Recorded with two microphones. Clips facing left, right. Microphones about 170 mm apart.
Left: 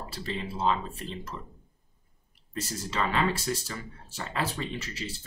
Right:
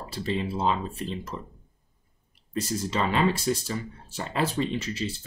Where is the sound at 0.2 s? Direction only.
20° right (ahead or behind).